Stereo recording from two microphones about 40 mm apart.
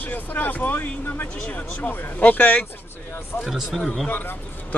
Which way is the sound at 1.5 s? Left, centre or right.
Left.